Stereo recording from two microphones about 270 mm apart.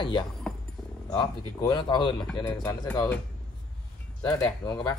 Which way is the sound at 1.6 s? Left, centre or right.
Centre.